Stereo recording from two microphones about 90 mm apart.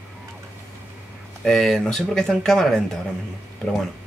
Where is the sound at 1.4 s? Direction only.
5° left (ahead or behind).